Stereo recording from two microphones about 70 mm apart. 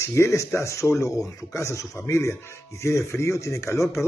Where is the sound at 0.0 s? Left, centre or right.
Left.